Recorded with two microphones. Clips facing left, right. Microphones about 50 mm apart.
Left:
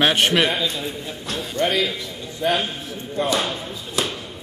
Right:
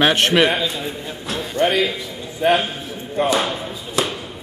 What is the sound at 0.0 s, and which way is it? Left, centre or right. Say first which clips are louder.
A man's voice: right 3 dB; centre.